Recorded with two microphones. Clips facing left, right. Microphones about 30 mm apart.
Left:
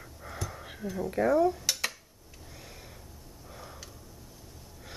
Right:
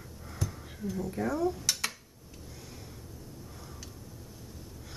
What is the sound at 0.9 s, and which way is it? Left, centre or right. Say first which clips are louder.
Speech: left 8 dB; left.